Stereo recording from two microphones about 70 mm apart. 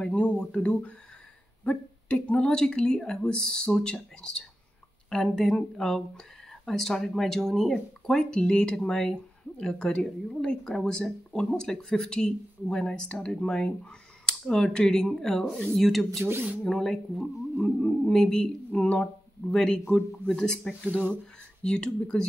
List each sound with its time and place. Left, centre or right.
0.0 s speech: centre